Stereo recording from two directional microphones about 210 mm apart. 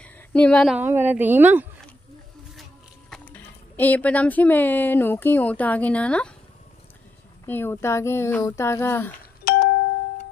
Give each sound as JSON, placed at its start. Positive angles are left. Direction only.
{"t": 0.0, "sound": "a sound", "side_deg": 5}
{"t": 0.7, "sound": "a woman's voice", "side_deg": -10}
{"t": 3.1, "sound": "speech", "side_deg": 10}
{"t": 7.4, "sound": "speech", "side_deg": 10}
{"t": 9.4, "sound": "doorbell", "side_deg": 45}